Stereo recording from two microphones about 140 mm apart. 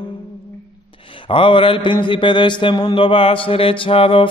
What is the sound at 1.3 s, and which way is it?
Mantra, 40° left (ahead or behind).